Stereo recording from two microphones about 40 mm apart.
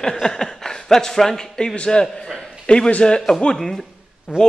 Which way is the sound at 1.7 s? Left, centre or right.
Left.